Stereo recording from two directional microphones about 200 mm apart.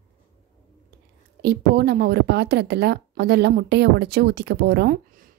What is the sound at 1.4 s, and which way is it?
Speech, 55° right (ahead or behind).